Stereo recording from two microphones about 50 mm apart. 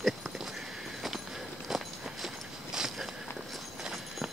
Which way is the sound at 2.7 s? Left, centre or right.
Centre.